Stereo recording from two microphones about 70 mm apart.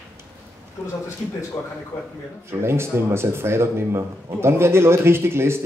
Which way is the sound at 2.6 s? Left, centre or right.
Right.